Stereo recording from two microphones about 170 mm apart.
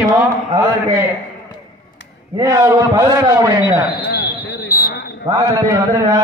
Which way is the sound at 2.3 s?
20° right (ahead or behind).